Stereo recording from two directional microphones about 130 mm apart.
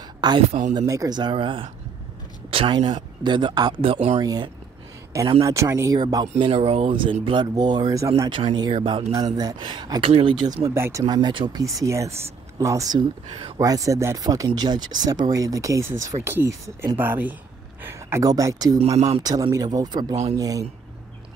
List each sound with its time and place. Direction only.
0.5 s speech: 60° right (ahead or behind)
0.8 s speech: 25° right (ahead or behind)
3.8 s speech: 50° right (ahead or behind)
4.2 s speech: 30° right (ahead or behind)
6.4 s speech: 45° right (ahead or behind)
9.1 s speech: 25° right (ahead or behind)
10.7 s speech: 20° right (ahead or behind)
11.6 s speech: 25° right (ahead or behind)
17.8 s speech: 25° right (ahead or behind)